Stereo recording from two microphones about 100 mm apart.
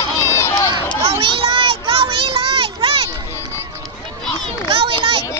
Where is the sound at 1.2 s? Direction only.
65° right (ahead or behind).